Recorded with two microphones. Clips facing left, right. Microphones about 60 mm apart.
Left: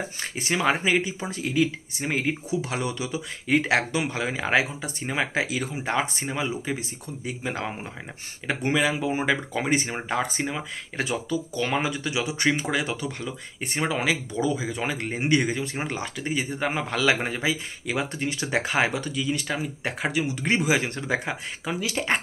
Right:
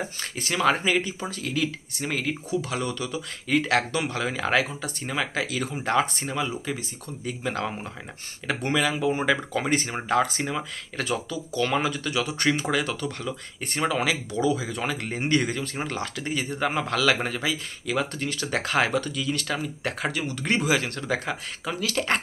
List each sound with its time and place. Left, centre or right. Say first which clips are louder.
0.2 s speech: right 1 dB; centre
5.6 s speech: right 2 dB; centre